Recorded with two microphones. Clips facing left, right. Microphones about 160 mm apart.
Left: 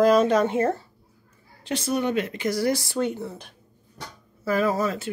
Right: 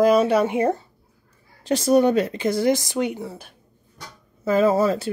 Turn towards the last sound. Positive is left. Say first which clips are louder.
# right 5 dB
turn(degrees=-30)  # may be behind; listen again after turning